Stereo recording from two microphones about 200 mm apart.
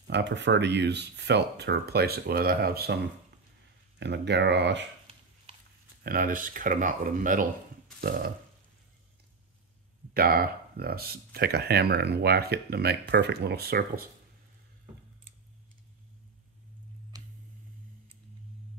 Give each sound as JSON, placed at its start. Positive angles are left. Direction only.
{"t": 0.1, "sound": "speech", "side_deg": -60}
{"t": 4.0, "sound": "speech", "side_deg": -60}
{"t": 6.0, "sound": "speech", "side_deg": -45}
{"t": 10.1, "sound": "speech", "side_deg": -50}